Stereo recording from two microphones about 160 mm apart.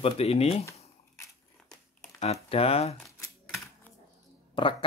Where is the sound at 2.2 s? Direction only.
40° left (ahead or behind).